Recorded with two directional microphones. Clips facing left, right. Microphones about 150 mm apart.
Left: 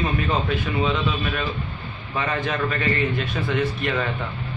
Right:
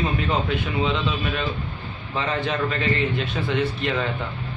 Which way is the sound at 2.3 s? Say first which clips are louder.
Right 1 dB; 30° right (ahead or behind).